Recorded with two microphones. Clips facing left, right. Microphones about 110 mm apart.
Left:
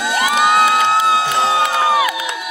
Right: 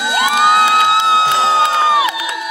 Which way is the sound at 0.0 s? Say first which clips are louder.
Right 2 dB; 25° right (ahead or behind).